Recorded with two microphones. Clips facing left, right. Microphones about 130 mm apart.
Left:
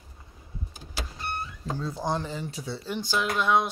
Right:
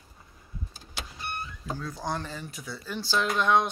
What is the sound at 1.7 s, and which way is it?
Speech, 20° left (ahead or behind).